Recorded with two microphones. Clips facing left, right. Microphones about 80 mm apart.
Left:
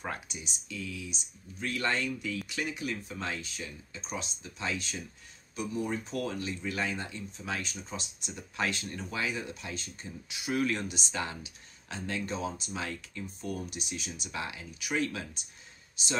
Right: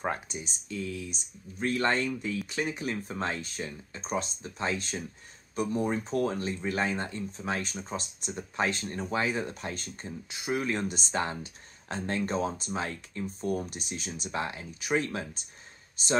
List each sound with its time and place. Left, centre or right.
0.0 s speech: right
10.5 s speech: right